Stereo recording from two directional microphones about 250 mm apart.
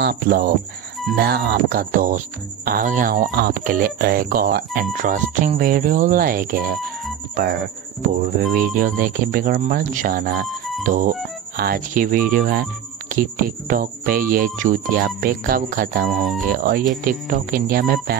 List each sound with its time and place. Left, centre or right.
0.0 s speech: right